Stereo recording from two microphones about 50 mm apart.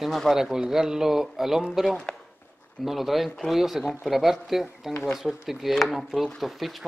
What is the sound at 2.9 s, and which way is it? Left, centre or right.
Speech, centre.